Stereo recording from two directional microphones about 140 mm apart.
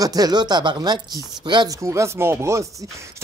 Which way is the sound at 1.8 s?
20° right (ahead or behind).